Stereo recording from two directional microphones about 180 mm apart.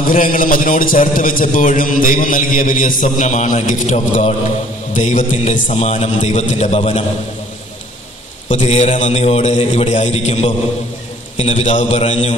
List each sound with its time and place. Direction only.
0.0 s a man's voice: 50° left (ahead or behind)
8.5 s a man's voice: 40° left (ahead or behind)